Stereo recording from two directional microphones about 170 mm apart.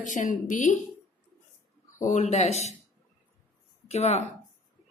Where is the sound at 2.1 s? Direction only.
45° left (ahead or behind).